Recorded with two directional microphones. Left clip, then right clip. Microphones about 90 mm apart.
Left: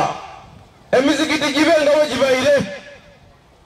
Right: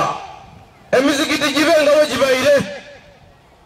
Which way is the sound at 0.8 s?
5° left (ahead or behind).